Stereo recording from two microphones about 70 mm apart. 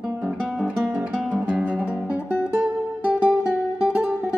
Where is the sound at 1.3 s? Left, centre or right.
Right.